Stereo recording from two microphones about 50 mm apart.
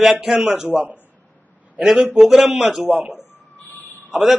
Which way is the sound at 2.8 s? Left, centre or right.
Right.